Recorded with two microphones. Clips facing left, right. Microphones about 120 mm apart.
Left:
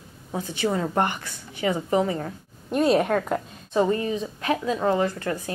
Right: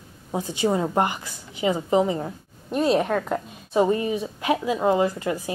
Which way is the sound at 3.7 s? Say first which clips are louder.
Right 2 dB; 15° right (ahead or behind).